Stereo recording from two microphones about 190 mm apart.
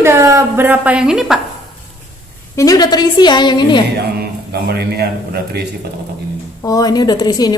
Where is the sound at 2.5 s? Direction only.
20° left (ahead or behind).